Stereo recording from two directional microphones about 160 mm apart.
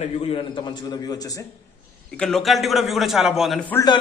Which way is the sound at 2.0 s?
5° left (ahead or behind).